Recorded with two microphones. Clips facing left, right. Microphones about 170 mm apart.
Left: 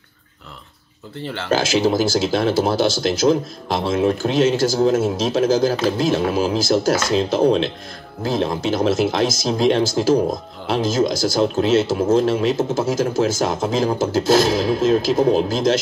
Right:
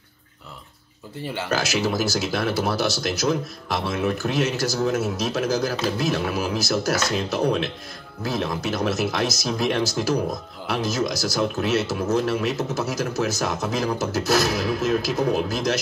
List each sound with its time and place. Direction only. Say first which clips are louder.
1.5 s speech: left 7 dB; 25° left (ahead or behind)